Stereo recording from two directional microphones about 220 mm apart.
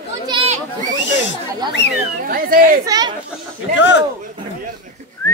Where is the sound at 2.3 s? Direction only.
40° right (ahead or behind).